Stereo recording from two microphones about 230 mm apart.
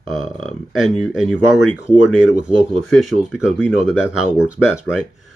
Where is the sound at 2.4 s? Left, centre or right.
Centre.